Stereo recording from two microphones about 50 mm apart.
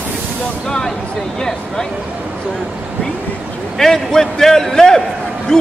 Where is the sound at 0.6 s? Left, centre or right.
Centre.